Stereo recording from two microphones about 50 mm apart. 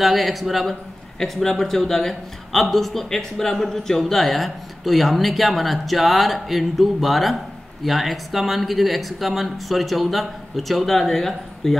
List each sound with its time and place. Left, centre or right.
0.0 s a man's voice: centre